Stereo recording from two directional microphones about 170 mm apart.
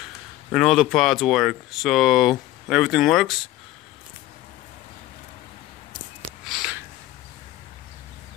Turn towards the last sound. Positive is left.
turn(degrees=-5)  # may be behind; listen again after turning